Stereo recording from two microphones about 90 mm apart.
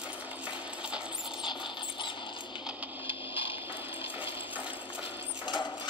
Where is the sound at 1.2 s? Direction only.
60° left (ahead or behind).